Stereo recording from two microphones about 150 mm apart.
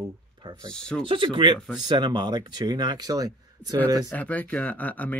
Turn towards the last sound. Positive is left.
turn(degrees=10)  # may be behind; listen again after turning